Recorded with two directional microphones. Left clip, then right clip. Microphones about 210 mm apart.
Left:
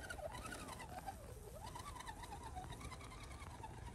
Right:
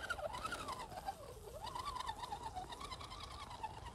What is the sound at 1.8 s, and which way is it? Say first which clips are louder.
Bird: right 11 dB; 30° right (ahead or behind).